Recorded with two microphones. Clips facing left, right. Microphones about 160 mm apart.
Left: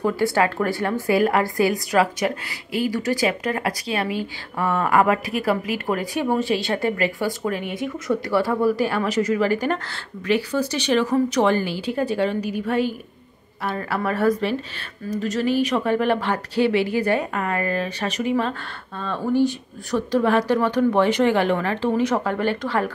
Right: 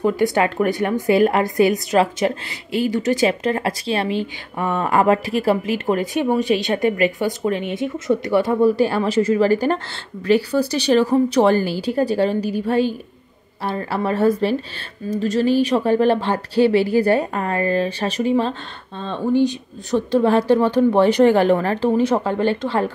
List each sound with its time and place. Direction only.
0.0 s a woman's voice: 20° right (ahead or behind)